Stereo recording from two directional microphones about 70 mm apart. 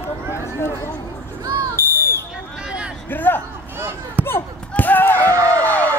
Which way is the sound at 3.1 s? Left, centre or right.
Left.